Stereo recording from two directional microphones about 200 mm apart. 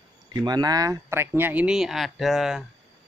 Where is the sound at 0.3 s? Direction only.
20° right (ahead or behind); by 2.6 s centre (ahead or behind).